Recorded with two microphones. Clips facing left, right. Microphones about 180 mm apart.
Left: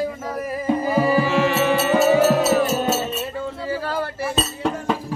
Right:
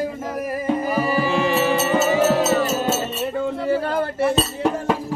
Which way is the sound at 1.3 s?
30° right (ahead or behind).